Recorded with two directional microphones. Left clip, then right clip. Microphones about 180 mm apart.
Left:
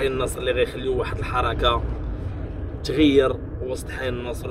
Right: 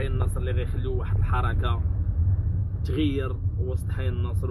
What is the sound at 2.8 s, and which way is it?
A man's voice, 20° left (ahead or behind).